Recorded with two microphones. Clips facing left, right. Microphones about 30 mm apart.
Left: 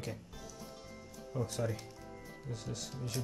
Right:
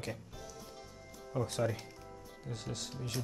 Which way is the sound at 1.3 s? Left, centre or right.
Right.